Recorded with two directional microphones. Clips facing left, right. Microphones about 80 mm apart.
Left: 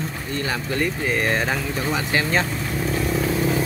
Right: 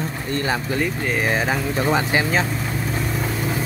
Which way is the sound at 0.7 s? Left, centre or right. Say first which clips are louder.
Even; centre.